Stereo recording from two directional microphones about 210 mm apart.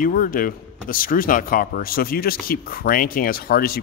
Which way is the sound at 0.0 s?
40° left (ahead or behind).